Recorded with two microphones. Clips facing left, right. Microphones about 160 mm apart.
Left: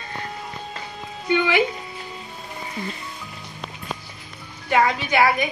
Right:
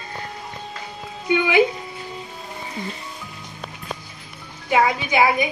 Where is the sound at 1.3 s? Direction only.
15° right (ahead or behind).